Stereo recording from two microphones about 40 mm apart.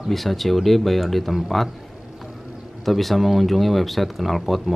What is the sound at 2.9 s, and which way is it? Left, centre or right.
Speech, centre.